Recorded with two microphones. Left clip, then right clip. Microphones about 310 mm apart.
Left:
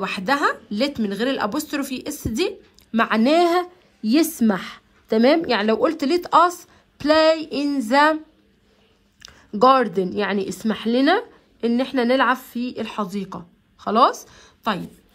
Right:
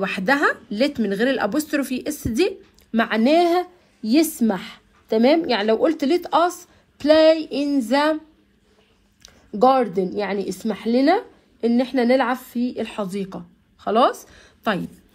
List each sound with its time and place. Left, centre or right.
0.0 s speech: centre
9.2 s a sound: left
10.4 s a woman's voice: left